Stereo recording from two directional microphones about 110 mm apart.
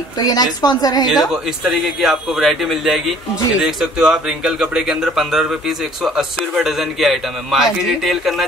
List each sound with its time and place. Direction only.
0.2 s a woman's voice: 35° left (ahead or behind)
1.0 s speech: centre (ahead or behind)